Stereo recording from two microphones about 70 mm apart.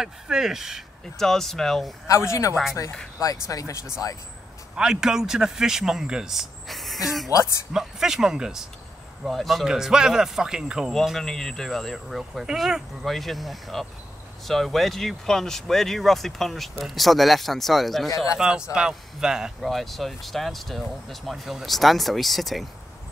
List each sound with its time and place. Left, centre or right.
0.0 s speech: centre
1.1 s speech: centre
2.0 s a man's voice: left
4.7 s speech: centre
7.2 s speech: left
7.7 s speech: centre
10.9 s speech: centre
18.1 s a man's voice: left
18.4 s speech: centre
19.6 s speech: centre